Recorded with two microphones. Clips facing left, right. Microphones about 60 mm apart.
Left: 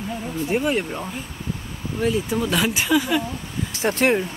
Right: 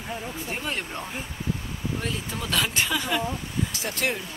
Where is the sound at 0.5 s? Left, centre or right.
Centre.